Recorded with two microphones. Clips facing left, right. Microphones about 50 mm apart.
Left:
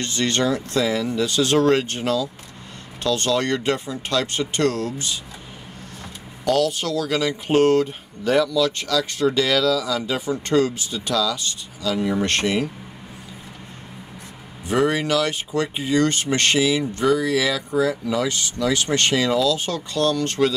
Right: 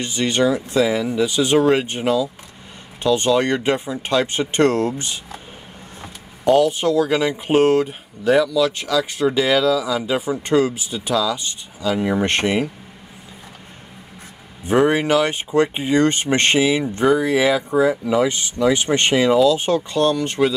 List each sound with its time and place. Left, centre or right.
0.0 s speech: centre; by 5.2 s right
6.4 s speech: right
14.6 s speech: right